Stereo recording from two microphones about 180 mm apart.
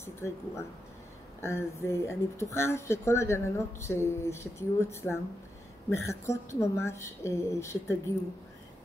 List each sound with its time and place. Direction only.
0.0 s speech: 15° left (ahead or behind)